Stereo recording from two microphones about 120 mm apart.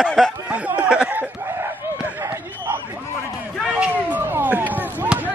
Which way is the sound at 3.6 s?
10° right (ahead or behind).